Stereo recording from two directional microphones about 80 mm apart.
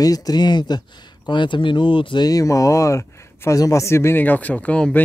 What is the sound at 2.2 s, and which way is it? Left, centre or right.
Speech, left.